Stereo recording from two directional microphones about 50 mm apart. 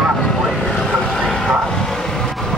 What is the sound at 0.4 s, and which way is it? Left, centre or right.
Vehicle, centre.